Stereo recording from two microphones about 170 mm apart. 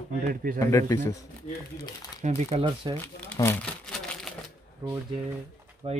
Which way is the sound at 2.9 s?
15° left (ahead or behind).